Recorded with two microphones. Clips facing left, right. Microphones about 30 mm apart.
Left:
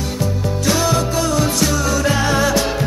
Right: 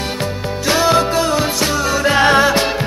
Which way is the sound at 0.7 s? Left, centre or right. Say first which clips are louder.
Right 4 dB; right.